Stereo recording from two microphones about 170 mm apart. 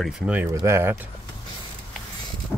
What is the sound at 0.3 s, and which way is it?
Speech, 15° right (ahead or behind).